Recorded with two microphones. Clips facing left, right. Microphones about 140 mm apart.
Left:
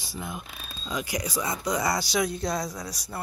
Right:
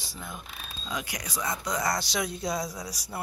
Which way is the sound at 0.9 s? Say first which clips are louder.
Left 5 dB; centre (ahead or behind).